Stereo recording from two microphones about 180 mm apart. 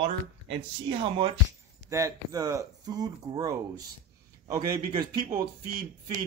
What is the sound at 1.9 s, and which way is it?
Speech, 15° right (ahead or behind).